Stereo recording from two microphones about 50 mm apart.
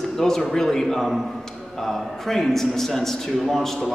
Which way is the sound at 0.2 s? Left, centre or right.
Centre.